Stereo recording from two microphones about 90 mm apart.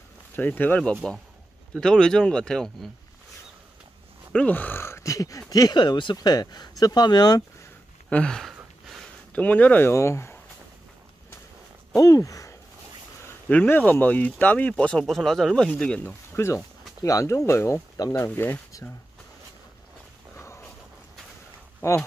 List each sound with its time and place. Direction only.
0.4 s speech: 20° left (ahead or behind); by 2.9 s 5° left (ahead or behind)
4.3 s speech: 15° left (ahead or behind); by 5.8 s 45° left (ahead or behind)
5.8 s speech: 60° left (ahead or behind)
6.1 s speech: 45° left (ahead or behind)
8.1 s speech: 10° left (ahead or behind)
9.3 s speech: 15° left (ahead or behind)
12.0 s speech: 40° left (ahead or behind)
13.5 s speech: 15° left (ahead or behind)
16.3 s speech: 30° left (ahead or behind)
17.9 s speech: 40° left (ahead or behind)
18.3 s speech: 25° left (ahead or behind)
20.3 s dog: 30° left (ahead or behind)